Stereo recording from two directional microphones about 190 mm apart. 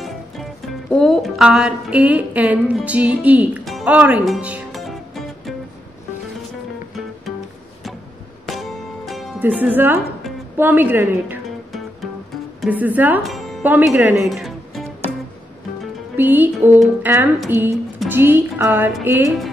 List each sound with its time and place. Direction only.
0.0 s speech: 5° left (ahead or behind)
8.5 s music: centre (ahead or behind)
9.4 s a woman's voice: 10° right (ahead or behind)
12.6 s speech: 10° right (ahead or behind)
14.2 s music: centre (ahead or behind)
16.2 s speech: 10° right (ahead or behind)